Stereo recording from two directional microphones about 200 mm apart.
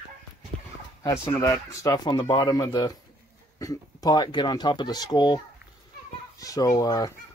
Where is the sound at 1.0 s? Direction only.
15° left (ahead or behind).